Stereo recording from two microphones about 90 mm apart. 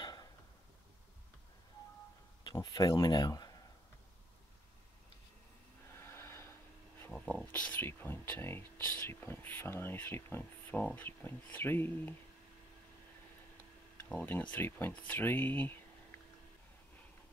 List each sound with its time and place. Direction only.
0.0 s a sound: 55° left (ahead or behind)
2.5 s speech: 45° left (ahead or behind)
5.9 s snort: 30° left (ahead or behind)
7.1 s speech: 15° left (ahead or behind)
13.9 s speech: 15° left (ahead or behind)